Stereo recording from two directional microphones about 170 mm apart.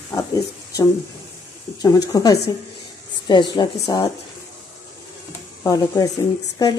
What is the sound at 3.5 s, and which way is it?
Speech, 20° left (ahead or behind).